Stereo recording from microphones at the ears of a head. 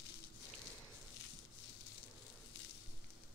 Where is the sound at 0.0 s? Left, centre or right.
Left.